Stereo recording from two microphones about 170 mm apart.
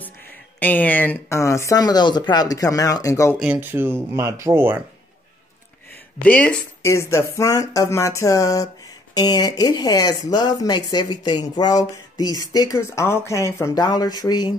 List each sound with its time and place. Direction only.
0.6 s speech: 10° left (ahead or behind)
3.3 s speech: 10° right (ahead or behind)
6.2 s speech: 10° left (ahead or behind); by 14.5 s 25° left (ahead or behind)